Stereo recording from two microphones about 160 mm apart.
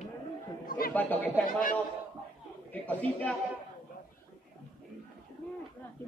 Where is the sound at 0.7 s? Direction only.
65° left (ahead or behind).